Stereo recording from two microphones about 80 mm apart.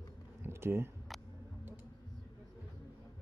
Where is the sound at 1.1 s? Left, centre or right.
Centre.